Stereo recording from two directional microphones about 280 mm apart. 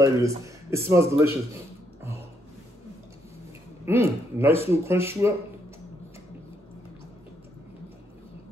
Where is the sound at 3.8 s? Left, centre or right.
Centre.